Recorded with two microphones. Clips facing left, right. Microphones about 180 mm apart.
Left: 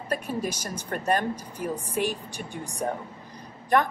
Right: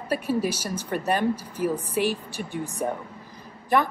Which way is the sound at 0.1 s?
10° right (ahead or behind).